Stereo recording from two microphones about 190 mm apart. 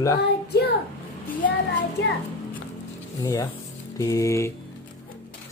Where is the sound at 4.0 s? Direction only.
15° left (ahead or behind).